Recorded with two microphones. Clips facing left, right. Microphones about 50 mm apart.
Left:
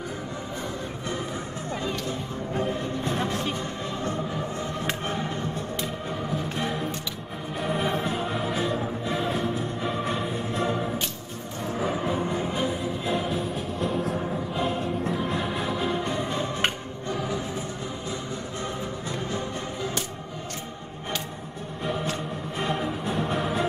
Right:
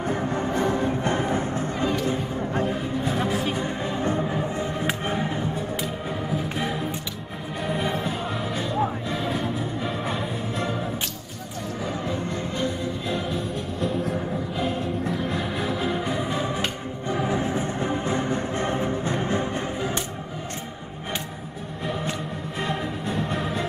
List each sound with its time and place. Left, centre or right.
0.3 s music: right
3.3 s music: centre
3.6 s music: centre
11.8 s music: centre
17.1 s music: right
22.6 s music: centre